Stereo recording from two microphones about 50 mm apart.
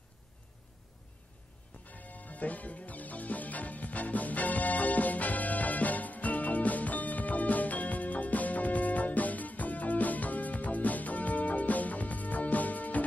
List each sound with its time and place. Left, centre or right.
1.9 s music: left